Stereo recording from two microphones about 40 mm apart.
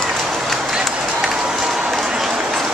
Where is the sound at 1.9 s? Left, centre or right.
Centre.